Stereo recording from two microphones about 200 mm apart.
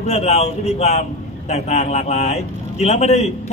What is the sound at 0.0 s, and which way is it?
A man's voice, 35° left (ahead or behind).